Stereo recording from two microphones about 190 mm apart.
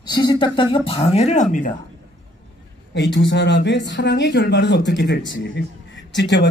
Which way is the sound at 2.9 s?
65° left (ahead or behind).